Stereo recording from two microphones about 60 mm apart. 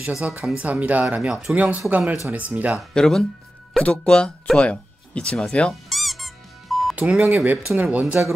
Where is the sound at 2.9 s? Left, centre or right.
Centre.